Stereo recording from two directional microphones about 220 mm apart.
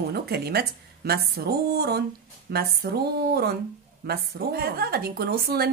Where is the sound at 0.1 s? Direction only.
45° right (ahead or behind).